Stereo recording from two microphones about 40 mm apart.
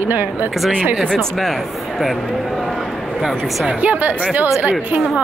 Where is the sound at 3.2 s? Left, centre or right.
Centre.